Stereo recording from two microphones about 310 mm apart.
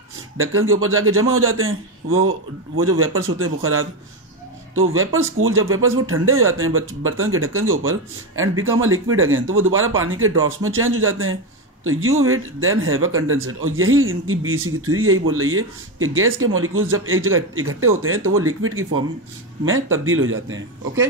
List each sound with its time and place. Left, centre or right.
0.4 s speech: right